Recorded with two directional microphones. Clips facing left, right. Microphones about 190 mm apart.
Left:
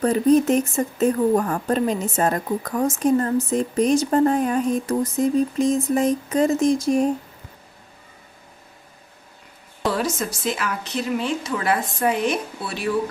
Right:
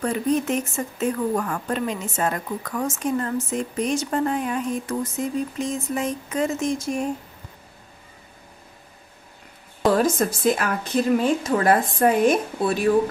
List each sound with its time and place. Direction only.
0.0 s speech: 35° left (ahead or behind)
9.8 s speech: 50° right (ahead or behind)